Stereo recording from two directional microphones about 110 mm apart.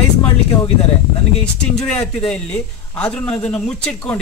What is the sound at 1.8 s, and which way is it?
Speech, 10° left (ahead or behind).